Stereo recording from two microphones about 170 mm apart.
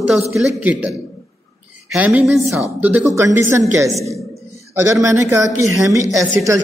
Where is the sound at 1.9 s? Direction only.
5° right (ahead or behind).